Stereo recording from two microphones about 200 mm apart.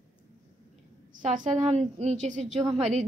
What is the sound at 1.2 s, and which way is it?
A woman's voice, 40° right (ahead or behind).